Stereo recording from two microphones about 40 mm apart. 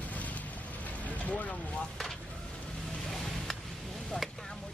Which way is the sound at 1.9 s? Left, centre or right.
Centre.